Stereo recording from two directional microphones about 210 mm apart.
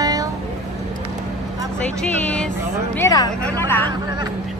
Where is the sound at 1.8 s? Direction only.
5° left (ahead or behind).